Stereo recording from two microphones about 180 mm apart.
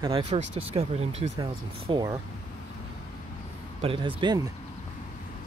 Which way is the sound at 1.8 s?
20° right (ahead or behind).